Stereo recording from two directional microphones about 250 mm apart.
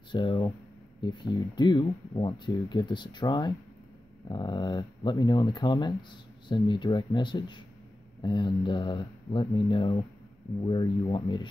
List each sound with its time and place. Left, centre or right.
0.1 s speech: centre